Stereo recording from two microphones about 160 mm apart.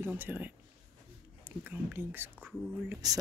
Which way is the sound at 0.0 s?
10° right (ahead or behind).